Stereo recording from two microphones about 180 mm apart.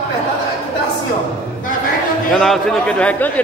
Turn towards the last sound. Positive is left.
turn(degrees=5)  # may be behind; listen again after turning